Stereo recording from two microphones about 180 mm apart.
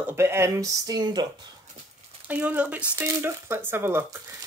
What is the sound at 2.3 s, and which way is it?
Speech, 10° right (ahead or behind).